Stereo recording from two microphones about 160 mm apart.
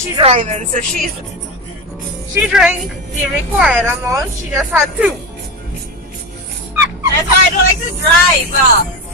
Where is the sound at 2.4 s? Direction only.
5° right (ahead or behind).